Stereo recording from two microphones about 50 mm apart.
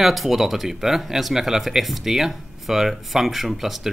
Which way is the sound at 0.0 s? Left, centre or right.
Centre.